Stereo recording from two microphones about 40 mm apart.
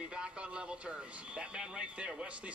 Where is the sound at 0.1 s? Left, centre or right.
Right.